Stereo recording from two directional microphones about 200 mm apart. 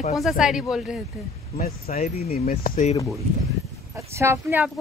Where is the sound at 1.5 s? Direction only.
35° left (ahead or behind).